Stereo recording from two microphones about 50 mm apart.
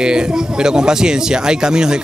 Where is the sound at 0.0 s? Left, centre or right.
Centre.